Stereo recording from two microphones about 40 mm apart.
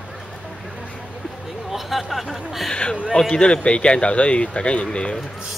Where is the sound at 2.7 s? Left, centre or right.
Left.